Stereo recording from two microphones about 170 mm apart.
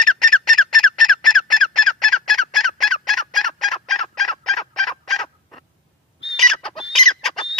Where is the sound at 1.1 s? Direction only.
Centre (ahead or behind).